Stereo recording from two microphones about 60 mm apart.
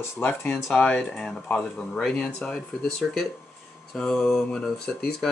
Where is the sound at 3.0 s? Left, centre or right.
Centre.